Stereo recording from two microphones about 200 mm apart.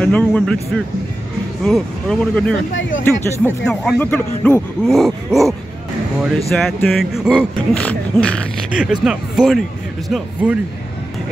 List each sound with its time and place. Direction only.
0.0 s speech: 5° left (ahead or behind)
2.7 s speech: 70° left (ahead or behind)
3.0 s speech: 15° left (ahead or behind)
6.5 s speech: centre (ahead or behind)